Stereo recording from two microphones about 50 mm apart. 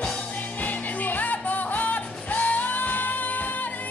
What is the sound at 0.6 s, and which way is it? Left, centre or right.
Music, left.